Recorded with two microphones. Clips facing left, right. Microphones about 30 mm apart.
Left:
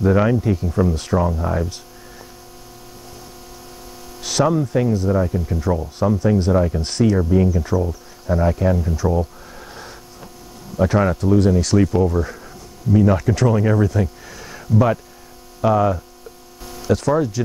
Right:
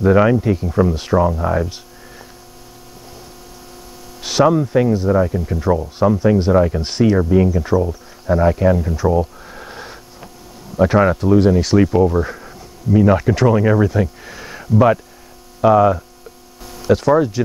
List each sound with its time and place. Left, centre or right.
0.0 s speech: centre
4.2 s speech: centre